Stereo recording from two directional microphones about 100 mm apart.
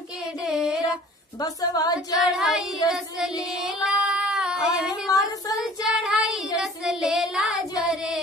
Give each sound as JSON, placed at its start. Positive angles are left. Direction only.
{"t": 0.5, "sound": "a sound", "side_deg": -5}
{"t": 1.4, "sound": "a woman's voice", "side_deg": 40}
{"t": 2.1, "sound": "child singing", "side_deg": -5}
{"t": 2.8, "sound": "a woman's voice", "side_deg": 40}
{"t": 3.6, "sound": "child singing", "side_deg": -5}
{"t": 5.0, "sound": "a woman's voice", "side_deg": 35}
{"t": 5.6, "sound": "child singing", "side_deg": 0}